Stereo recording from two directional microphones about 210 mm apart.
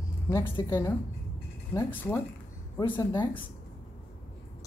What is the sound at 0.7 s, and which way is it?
Speech, 10° left (ahead or behind).